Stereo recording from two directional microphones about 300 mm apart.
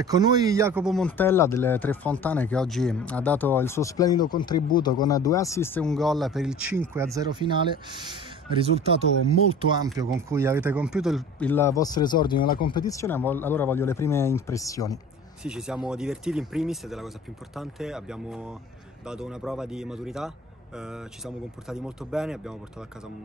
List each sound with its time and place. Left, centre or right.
0.0 s speech: centre
9.5 s speech: centre
15.4 s speech: centre